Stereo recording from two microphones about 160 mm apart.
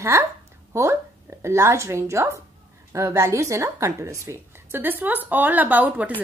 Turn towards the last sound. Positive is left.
turn(degrees=-10)  # may be behind; listen again after turning